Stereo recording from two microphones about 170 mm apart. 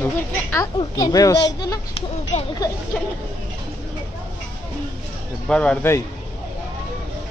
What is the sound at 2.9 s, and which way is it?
Speech, 5° left (ahead or behind).